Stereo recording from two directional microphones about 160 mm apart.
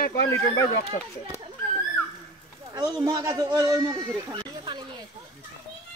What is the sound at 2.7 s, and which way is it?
Speech, 25° right (ahead or behind).